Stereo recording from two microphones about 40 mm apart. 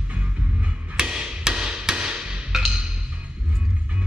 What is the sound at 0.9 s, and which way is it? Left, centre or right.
Hammer, centre.